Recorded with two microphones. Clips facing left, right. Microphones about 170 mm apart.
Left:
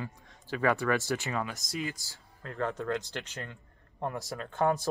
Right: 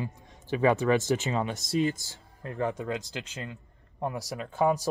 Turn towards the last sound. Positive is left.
turn(degrees=-10)  # may be behind; listen again after turning